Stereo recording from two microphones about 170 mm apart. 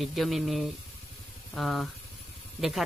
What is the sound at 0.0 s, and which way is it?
Speech, centre (ahead or behind).